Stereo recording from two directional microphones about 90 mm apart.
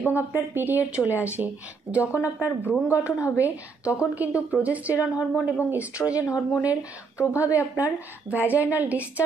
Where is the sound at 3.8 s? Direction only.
15° right (ahead or behind).